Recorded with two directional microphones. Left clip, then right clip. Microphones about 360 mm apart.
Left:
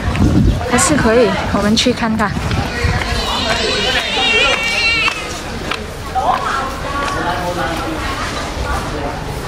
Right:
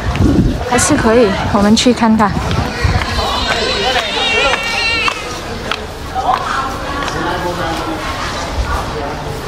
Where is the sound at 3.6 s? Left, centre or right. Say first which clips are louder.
Right 1 dB; right.